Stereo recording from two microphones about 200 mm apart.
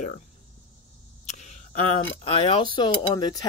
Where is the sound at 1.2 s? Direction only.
35° left (ahead or behind).